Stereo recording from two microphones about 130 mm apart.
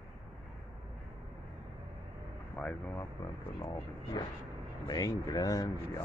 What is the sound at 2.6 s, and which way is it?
Speech, 10° left (ahead or behind).